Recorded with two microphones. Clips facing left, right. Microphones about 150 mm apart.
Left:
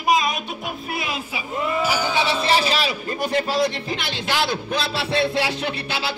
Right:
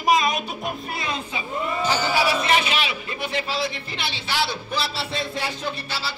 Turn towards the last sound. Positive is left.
turn(degrees=75)  # may be behind; listen again after turning